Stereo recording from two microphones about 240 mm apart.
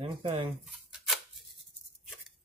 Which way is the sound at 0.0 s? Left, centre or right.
Right.